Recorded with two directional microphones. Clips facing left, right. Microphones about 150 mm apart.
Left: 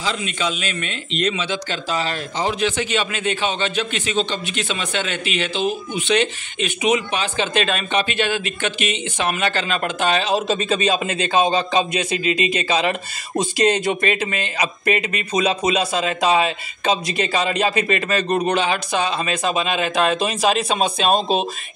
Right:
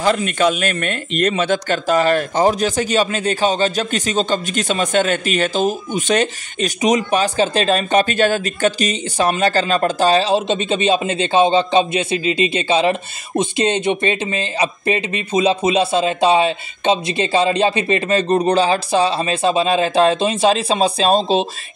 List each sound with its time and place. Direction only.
0.0 s speech: 55° right (ahead or behind); by 21.5 s 30° right (ahead or behind)